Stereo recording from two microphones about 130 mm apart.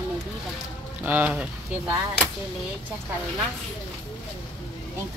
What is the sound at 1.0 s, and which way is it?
Speech, 10° right (ahead or behind).